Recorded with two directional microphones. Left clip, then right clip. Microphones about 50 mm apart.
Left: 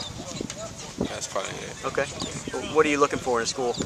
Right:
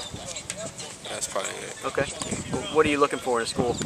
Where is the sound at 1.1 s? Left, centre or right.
Centre.